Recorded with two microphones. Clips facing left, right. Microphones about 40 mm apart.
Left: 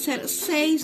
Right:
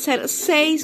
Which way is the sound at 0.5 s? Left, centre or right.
Right.